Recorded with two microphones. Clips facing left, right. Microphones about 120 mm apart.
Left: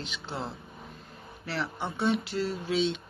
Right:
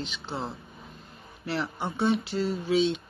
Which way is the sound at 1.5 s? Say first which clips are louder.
Right 2 dB; centre (ahead or behind).